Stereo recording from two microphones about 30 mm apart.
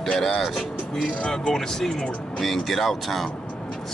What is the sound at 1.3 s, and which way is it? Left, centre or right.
Speech, centre.